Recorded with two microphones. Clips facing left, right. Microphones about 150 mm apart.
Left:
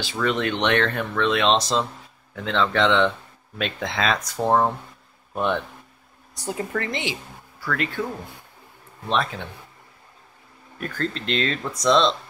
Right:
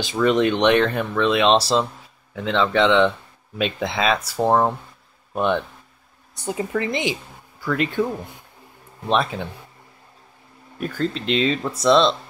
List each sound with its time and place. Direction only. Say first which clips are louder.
0.0 s speech: right 6 dB; 15° right (ahead or behind)
9.1 s speech: right 3 dB; 10° right (ahead or behind)
10.8 s speech: right 4 dB; 10° right (ahead or behind)